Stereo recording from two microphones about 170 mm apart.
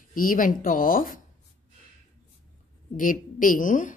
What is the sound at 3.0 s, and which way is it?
Speech, 50° left (ahead or behind).